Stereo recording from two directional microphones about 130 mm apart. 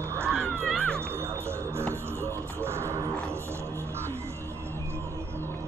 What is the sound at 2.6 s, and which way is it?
Music, 20° right (ahead or behind).